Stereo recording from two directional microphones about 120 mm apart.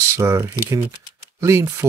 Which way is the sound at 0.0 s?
25° right (ahead or behind).